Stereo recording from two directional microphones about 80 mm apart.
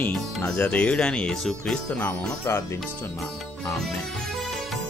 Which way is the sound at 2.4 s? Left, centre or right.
Left.